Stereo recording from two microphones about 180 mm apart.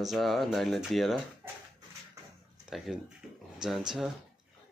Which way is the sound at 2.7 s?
Centre (ahead or behind).